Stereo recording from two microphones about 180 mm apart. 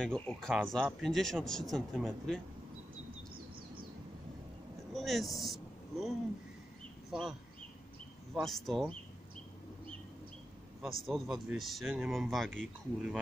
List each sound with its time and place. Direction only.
0.0 s speech: 5° left (ahead or behind)
4.9 s speech: centre (ahead or behind)
8.4 s speech: centre (ahead or behind)
10.8 s speech: centre (ahead or behind)